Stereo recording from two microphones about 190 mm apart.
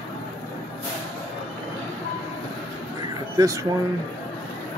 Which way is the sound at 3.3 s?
15° right (ahead or behind).